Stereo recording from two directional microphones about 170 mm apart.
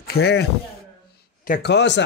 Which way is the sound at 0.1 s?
75° left (ahead or behind).